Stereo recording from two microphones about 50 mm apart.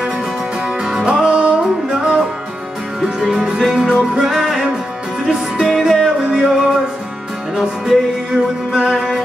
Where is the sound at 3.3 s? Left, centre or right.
Centre.